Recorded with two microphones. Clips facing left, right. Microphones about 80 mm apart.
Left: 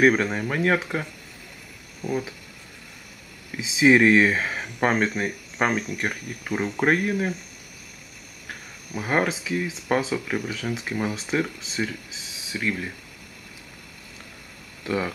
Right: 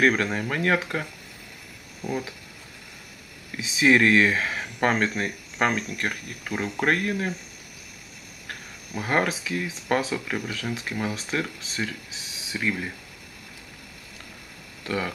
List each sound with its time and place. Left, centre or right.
0.0 s speech: centre
2.0 s speech: centre
3.5 s speech: centre
3.9 s speech: centre
8.5 s speech: centre